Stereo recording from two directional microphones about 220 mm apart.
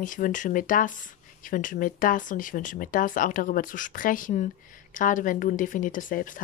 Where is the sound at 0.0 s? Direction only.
35° left (ahead or behind).